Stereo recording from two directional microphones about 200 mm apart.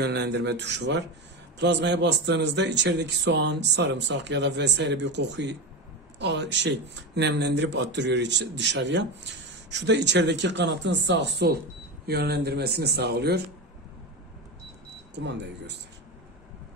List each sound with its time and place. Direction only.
0.0 s a man's voice: 55° right (ahead or behind)
15.1 s a man's voice: 60° right (ahead or behind)